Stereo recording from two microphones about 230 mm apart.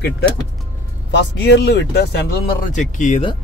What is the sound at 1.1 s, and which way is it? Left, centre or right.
Speech, left.